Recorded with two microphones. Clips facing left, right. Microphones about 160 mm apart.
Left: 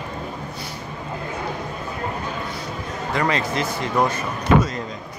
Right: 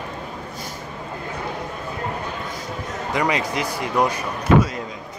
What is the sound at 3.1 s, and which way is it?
Speech, 15° right (ahead or behind).